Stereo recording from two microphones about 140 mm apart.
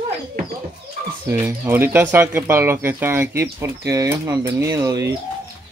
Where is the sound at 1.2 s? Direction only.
15° right (ahead or behind).